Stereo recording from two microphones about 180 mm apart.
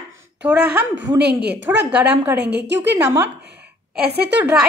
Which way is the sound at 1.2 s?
65° right (ahead or behind).